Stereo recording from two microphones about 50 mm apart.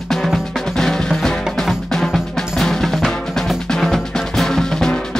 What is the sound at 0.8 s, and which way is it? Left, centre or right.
Music, centre.